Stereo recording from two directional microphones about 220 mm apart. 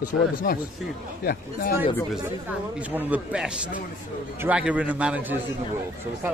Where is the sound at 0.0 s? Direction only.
40° left (ahead or behind).